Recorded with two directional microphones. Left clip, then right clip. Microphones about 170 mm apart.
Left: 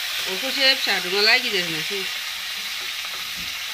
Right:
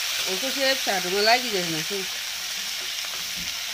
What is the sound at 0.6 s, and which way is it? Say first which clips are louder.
Speech: left 6 dB; 55° right (ahead or behind).